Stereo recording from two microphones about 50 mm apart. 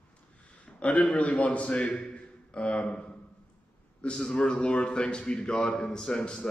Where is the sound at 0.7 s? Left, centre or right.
Left.